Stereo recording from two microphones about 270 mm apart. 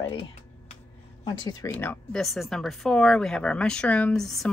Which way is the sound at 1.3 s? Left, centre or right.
Centre.